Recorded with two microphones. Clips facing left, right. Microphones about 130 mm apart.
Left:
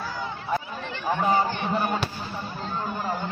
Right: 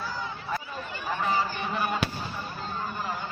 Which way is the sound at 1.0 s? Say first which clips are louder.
Left 5 dB; 35° left (ahead or behind).